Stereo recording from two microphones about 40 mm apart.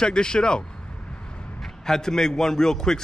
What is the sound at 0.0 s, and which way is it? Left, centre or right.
A man's voice, centre.